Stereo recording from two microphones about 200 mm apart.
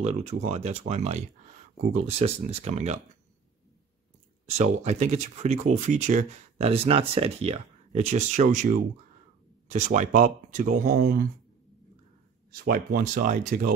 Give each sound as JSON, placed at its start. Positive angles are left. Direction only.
{"t": 0.0, "sound": "speech", "side_deg": -30}
{"t": 4.5, "sound": "speech", "side_deg": -35}
{"t": 12.6, "sound": "speech", "side_deg": -45}